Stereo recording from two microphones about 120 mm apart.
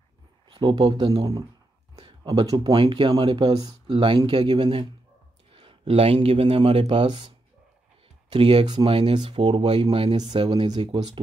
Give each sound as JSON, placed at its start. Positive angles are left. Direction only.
{"t": 0.5, "sound": "speech", "side_deg": -40}
{"t": 3.8, "sound": "speech", "side_deg": -45}
{"t": 8.3, "sound": "speech", "side_deg": -50}